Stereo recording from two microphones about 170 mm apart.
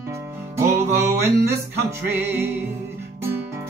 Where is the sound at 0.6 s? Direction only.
15° right (ahead or behind).